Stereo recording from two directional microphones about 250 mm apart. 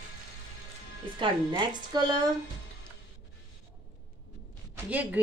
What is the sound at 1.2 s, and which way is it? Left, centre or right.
A woman's voice, centre.